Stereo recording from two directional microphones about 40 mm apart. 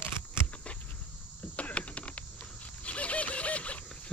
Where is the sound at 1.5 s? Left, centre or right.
Left.